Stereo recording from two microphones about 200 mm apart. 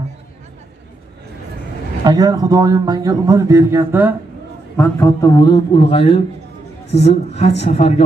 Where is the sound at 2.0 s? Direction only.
20° right (ahead or behind).